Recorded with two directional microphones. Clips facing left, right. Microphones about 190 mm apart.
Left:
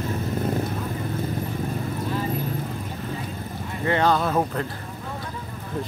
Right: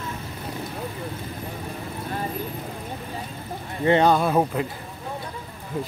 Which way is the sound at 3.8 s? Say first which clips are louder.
Right 3 dB; 20° right (ahead or behind).